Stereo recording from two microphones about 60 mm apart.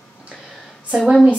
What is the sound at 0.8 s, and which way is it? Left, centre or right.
Speech, centre.